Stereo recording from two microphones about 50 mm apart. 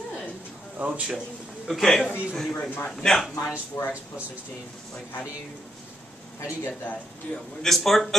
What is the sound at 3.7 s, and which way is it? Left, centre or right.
Speech, left.